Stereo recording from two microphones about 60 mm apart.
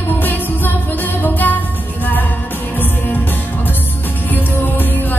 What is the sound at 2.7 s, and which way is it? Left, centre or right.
Music, left.